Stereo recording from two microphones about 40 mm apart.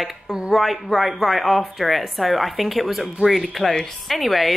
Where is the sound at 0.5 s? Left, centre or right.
Centre.